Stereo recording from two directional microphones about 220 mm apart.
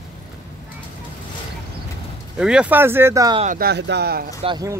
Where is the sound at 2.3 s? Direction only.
5° right (ahead or behind).